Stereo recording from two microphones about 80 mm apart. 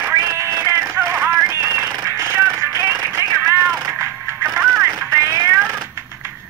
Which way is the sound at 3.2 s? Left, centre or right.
Right.